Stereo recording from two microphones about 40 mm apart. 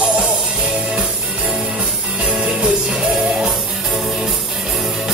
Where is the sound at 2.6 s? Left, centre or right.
Centre.